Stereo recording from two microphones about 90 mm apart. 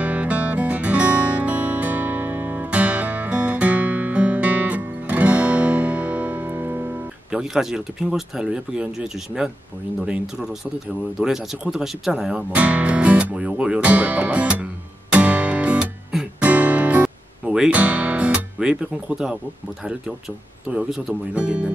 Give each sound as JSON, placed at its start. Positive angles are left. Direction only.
{"t": 0.0, "sound": "music", "side_deg": -15}
{"t": 7.2, "sound": "speech", "side_deg": -5}
{"t": 16.1, "sound": "music", "side_deg": -5}
{"t": 16.4, "sound": "music", "side_deg": -15}
{"t": 19.8, "sound": "speech", "side_deg": -5}